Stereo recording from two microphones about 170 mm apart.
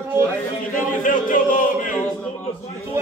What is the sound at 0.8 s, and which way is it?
Speech, 50° left (ahead or behind).